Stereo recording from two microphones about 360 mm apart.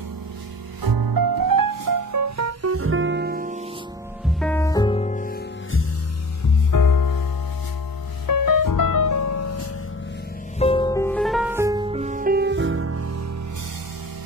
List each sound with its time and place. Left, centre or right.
0.8 s music: right
4.4 s music: centre; by 5.4 s left
6.7 s music: left
8.3 s music: left
10.6 s music: centre; by 13.2 s right